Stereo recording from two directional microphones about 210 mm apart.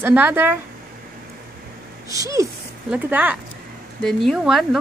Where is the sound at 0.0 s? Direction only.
10° right (ahead or behind).